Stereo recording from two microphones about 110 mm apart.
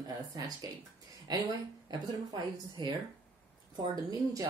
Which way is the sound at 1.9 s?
35° right (ahead or behind).